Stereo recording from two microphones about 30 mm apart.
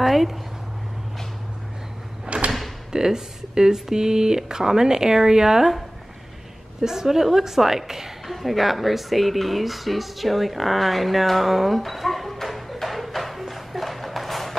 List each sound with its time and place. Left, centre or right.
0.0 s a sound: centre
2.2 s drawer open or close: right
2.9 s speech: right
6.8 s a woman's voice: centre
8.3 s speech: centre
11.8 s bow-wow: centre
12.8 s music: centre